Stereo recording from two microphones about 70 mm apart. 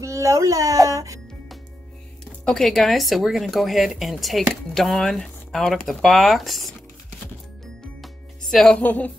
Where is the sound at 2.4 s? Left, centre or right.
Centre.